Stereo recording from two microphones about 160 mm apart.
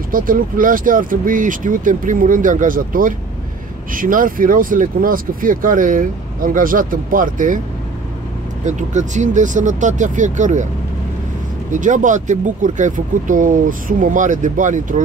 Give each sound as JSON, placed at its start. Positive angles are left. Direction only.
{"t": 0.1, "sound": "speech", "side_deg": -60}
{"t": 8.6, "sound": "speech", "side_deg": -50}
{"t": 11.7, "sound": "speech", "side_deg": -50}